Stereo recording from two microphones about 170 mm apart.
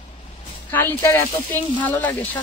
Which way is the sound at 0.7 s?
10° left (ahead or behind).